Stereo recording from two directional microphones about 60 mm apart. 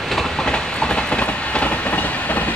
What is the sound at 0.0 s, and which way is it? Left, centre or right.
Train, centre.